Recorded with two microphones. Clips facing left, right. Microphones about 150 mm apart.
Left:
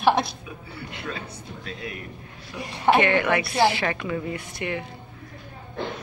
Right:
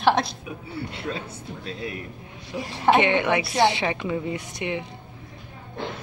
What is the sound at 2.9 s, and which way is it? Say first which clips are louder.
A man's voice: even; 20° right (ahead or behind).